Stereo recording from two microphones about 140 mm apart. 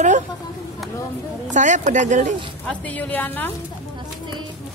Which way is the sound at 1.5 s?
60° right (ahead or behind).